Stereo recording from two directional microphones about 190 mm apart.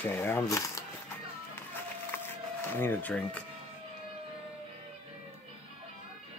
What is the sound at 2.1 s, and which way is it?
Music, 10° left (ahead or behind).